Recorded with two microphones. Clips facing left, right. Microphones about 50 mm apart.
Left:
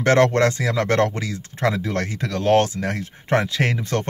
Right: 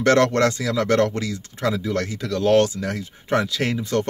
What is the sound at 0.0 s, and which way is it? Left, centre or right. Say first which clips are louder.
Speech: left 1 dB; left.